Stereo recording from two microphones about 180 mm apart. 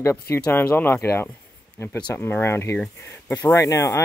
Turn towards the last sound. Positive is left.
turn(degrees=15)  # may be behind; listen again after turning